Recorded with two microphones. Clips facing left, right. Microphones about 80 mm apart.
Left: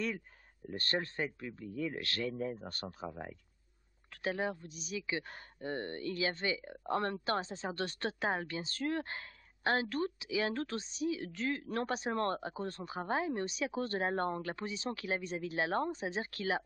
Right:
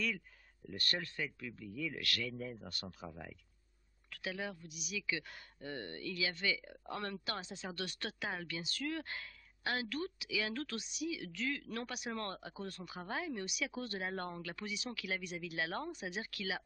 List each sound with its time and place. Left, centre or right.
0.7 s speech: left